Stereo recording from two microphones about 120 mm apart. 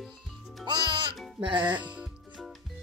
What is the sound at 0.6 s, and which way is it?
Music, 40° right (ahead or behind).